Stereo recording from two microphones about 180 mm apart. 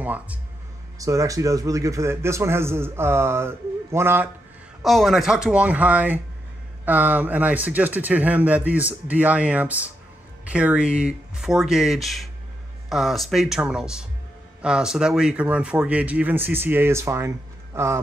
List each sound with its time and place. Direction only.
0.0 s a man's voice: 10° right (ahead or behind)
4.8 s a man's voice: centre (ahead or behind); by 18.0 s 15° right (ahead or behind)